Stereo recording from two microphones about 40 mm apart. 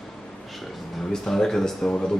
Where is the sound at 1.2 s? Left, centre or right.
Centre.